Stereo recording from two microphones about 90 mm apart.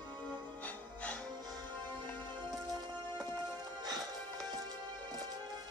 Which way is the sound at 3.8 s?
45° right (ahead or behind).